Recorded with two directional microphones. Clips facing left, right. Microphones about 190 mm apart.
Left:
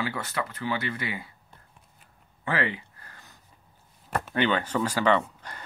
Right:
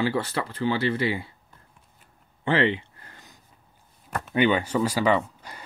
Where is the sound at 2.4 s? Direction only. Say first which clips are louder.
Right 6 dB; 25° right (ahead or behind).